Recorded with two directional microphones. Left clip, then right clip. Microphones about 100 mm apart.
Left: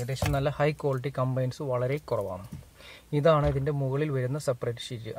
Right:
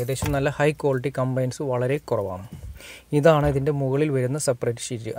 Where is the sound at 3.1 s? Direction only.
40° right (ahead or behind).